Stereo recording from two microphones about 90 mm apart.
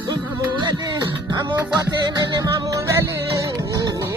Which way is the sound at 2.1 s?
45° right (ahead or behind).